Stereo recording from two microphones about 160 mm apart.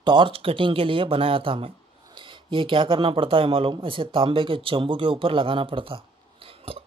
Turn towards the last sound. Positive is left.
turn(degrees=-35)  # may be behind; listen again after turning